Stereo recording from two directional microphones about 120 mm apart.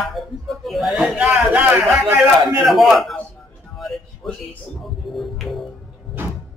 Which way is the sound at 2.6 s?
Centre (ahead or behind).